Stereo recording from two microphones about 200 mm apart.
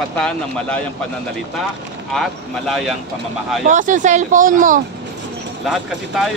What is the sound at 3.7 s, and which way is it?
Speech, 40° right (ahead or behind).